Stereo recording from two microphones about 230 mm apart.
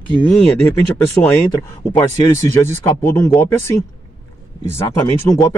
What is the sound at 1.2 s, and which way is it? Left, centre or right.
Speech, centre.